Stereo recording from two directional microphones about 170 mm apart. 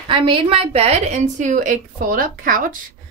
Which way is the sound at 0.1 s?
30° right (ahead or behind).